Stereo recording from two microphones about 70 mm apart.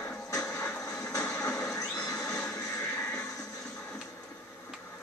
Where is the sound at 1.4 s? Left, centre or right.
Centre.